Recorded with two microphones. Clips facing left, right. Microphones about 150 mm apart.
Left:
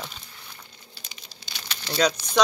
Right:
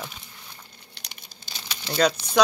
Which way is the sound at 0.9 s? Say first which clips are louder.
Even; 65° right (ahead or behind).